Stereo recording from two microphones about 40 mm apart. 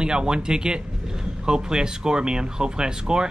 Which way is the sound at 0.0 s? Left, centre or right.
Right.